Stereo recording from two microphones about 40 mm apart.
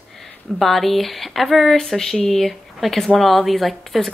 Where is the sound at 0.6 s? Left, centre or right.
Centre.